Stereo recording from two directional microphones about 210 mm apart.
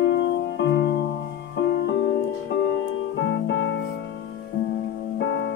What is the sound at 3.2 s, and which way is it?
Music, 60° left (ahead or behind).